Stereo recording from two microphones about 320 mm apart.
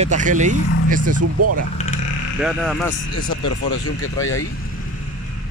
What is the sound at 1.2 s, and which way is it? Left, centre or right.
Speech, right.